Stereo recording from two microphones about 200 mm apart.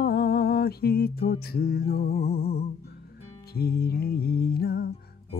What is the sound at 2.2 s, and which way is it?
Music, 50° left (ahead or behind).